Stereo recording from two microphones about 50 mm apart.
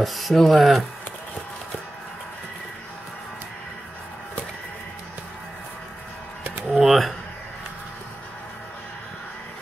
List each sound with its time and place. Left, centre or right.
0.0 s speech: centre
6.7 s speech: centre